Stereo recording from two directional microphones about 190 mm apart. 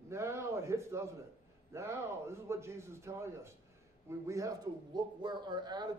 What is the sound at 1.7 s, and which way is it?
A man's voice, 15° right (ahead or behind).